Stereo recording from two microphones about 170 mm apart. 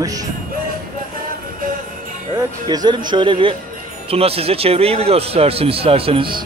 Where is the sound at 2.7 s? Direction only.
25° right (ahead or behind).